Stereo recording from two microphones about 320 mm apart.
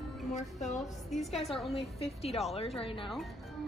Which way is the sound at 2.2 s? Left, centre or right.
Centre.